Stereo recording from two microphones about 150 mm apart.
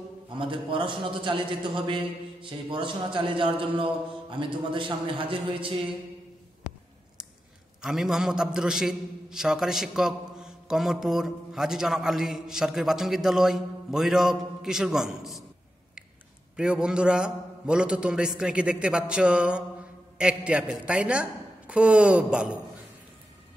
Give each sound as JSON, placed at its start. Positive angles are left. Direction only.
{"t": 0.4, "sound": "a man's voice", "side_deg": -35}
{"t": 7.8, "sound": "a man's voice", "side_deg": -5}
{"t": 16.5, "sound": "a man's voice", "side_deg": -5}